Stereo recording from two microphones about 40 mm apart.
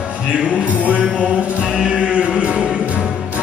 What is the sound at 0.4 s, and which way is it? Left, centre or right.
Music, right.